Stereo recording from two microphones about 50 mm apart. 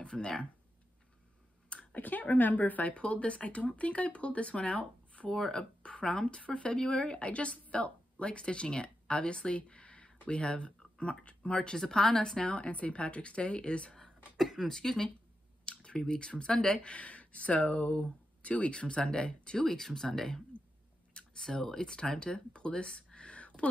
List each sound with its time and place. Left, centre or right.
0.0 s speech: centre
1.7 s a sound: left
2.0 s speech: left
5.3 s speech: centre
13.9 s speech: centre; by 23.7 s left